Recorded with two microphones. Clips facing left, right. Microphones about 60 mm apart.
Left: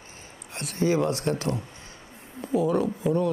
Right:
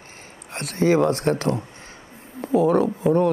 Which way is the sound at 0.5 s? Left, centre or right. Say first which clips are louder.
Right 5 dB; right.